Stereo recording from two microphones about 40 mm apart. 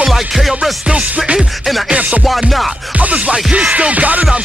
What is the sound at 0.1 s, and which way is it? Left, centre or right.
Music, centre.